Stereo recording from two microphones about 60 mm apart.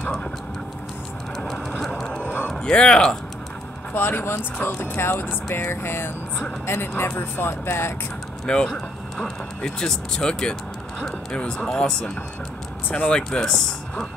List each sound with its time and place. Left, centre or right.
0.0 s speech: centre
1.8 s a sound: centre
2.6 s speech: centre
3.9 s speech: left
8.7 s speech: centre
12.8 s speech: left
13.1 s speech: centre